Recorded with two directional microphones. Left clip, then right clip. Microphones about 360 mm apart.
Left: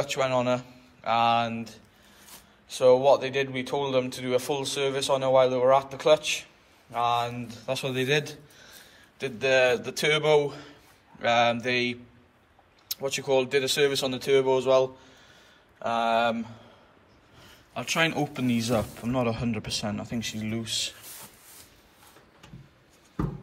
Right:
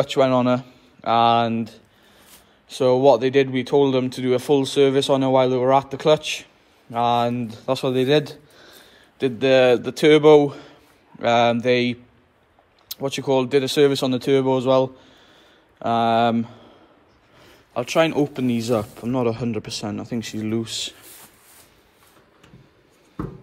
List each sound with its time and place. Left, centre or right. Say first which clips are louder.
0.0 s speech: right 7 dB; centre
17.7 s speech: right 7 dB; centre